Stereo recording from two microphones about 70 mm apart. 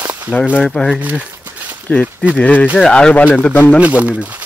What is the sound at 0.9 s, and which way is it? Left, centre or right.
Speech, right.